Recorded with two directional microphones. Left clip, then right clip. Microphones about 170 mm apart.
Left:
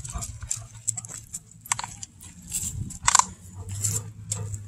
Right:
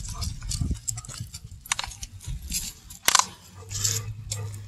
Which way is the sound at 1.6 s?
35° left (ahead or behind).